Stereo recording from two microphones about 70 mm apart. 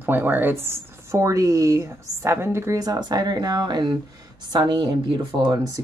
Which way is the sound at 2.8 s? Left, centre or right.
Right.